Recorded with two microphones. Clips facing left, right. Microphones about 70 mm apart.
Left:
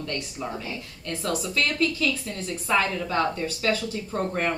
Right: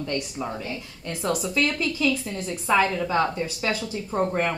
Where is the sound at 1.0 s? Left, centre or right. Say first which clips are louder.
Right 2 dB; centre.